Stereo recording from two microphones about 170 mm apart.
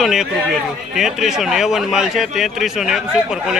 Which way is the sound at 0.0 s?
Centre (ahead or behind).